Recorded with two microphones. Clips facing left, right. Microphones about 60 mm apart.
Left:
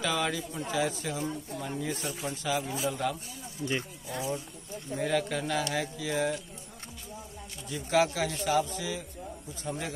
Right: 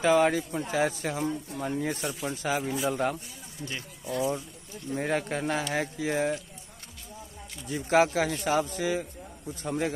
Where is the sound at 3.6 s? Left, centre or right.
Left.